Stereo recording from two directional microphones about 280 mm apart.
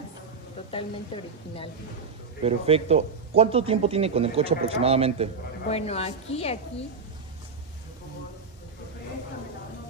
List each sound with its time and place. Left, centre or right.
0.7 s a woman's voice: centre
2.4 s speech: right
5.7 s a woman's voice: left